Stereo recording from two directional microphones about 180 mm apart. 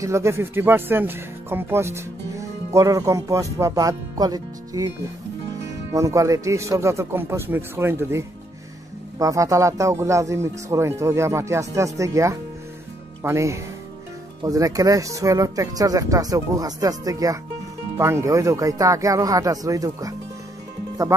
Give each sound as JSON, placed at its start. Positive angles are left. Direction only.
{"t": 0.0, "sound": "speech", "side_deg": -15}